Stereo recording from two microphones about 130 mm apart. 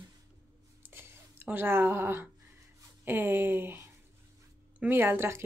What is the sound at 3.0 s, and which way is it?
A woman's voice, 15° right (ahead or behind).